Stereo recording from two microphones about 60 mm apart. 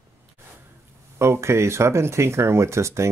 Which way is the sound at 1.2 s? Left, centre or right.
Right.